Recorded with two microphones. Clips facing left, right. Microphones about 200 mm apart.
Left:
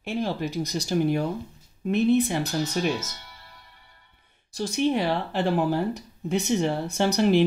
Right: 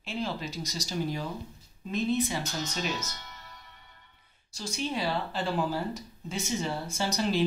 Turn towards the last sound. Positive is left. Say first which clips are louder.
# left 8 dB
turn(degrees=60)  # may be behind; listen again after turning